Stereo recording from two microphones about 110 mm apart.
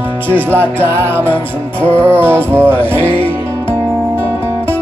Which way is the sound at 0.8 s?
20° right (ahead or behind).